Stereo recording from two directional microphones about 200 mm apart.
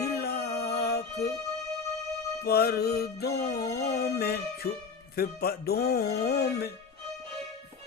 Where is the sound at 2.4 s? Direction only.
50° left (ahead or behind).